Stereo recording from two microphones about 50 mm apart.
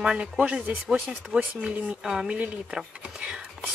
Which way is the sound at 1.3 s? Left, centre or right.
Right.